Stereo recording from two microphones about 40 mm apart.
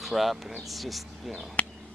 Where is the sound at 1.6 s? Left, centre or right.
Left.